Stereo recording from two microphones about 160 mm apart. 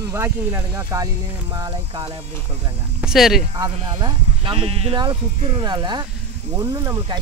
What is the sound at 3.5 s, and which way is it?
Speech, 25° right (ahead or behind).